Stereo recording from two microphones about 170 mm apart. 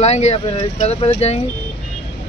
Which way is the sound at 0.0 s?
40° left (ahead or behind).